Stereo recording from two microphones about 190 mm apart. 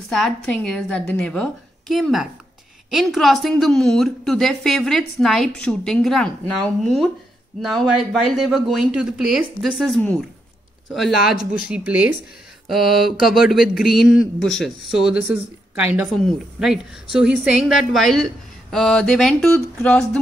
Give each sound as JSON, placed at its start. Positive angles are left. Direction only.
{"t": 0.1, "sound": "speech", "side_deg": 5}